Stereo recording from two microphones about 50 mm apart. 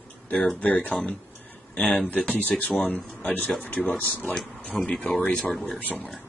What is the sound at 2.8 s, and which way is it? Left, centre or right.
Speech, centre.